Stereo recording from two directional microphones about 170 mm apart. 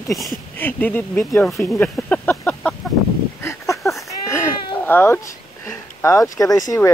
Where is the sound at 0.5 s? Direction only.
10° left (ahead or behind).